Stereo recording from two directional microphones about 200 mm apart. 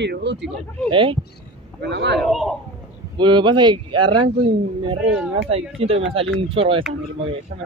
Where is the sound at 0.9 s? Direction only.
25° right (ahead or behind).